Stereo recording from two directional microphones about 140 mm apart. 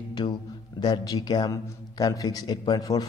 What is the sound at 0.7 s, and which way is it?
A man's voice, 30° left (ahead or behind).